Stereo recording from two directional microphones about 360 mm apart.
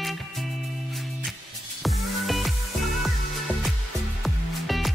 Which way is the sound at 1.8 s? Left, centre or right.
Centre.